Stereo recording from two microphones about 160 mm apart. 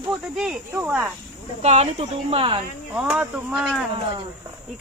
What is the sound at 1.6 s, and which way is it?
Speech, 45° right (ahead or behind).